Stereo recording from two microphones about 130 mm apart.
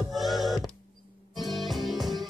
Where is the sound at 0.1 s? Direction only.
Centre (ahead or behind).